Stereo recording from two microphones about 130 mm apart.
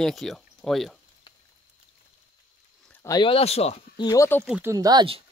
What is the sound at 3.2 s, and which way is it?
Speech, 50° left (ahead or behind).